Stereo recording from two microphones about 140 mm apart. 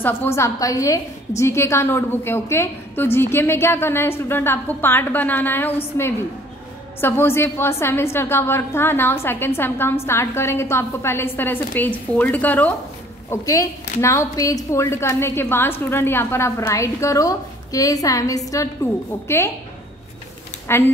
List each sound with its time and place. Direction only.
0.0 s a woman's voice: 15° left (ahead or behind)
13.3 s a woman's voice: 25° left (ahead or behind)
20.7 s a woman's voice: 15° left (ahead or behind)